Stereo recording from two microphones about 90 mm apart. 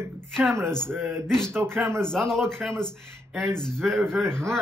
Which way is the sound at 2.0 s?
5° left (ahead or behind).